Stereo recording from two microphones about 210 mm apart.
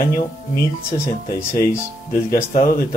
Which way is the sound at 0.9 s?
40° left (ahead or behind).